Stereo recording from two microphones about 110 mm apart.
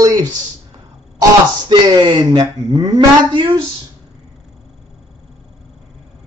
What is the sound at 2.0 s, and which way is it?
A man's voice, 40° right (ahead or behind).